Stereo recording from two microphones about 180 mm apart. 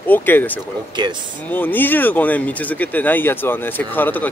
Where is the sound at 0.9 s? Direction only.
25° right (ahead or behind).